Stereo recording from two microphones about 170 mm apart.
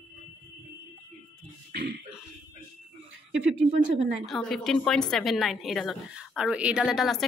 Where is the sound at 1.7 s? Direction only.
70° right (ahead or behind).